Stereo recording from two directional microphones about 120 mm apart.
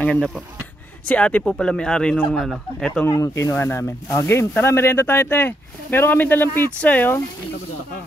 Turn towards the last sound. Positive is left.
turn(degrees=15)  # may be behind; listen again after turning